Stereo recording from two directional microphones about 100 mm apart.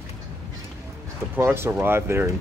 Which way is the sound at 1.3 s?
25° right (ahead or behind).